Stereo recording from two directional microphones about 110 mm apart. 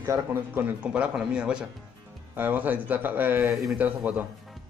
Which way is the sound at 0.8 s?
10° right (ahead or behind).